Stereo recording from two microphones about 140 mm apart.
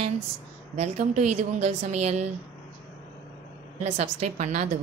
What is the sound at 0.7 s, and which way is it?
A woman's voice, 55° right (ahead or behind).